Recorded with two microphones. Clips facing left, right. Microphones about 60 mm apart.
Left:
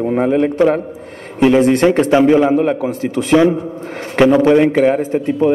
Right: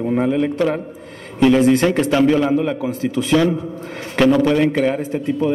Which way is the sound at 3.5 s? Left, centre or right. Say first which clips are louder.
Left 3 dB; left.